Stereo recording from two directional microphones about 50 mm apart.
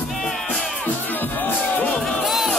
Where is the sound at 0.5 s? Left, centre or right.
Left.